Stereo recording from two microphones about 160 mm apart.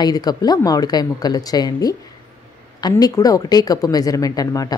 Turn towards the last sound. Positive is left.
turn(degrees=20)  # may be behind; listen again after turning